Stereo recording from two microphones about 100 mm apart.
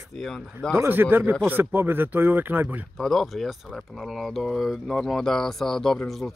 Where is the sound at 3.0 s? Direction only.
Centre (ahead or behind).